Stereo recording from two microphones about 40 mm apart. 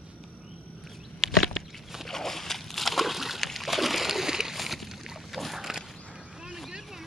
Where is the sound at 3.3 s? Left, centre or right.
Centre.